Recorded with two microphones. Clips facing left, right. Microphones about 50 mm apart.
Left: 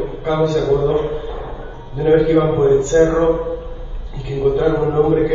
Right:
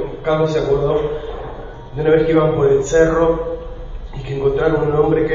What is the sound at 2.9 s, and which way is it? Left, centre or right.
A man's voice, right.